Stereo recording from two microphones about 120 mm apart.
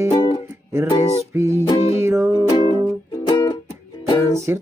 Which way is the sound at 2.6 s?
30° left (ahead or behind).